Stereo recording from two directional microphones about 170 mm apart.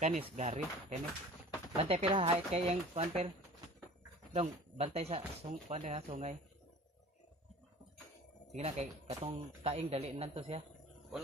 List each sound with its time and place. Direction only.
0.0 s speech: 40° right (ahead or behind)
4.3 s speech: 35° right (ahead or behind)
8.5 s speech: 35° right (ahead or behind)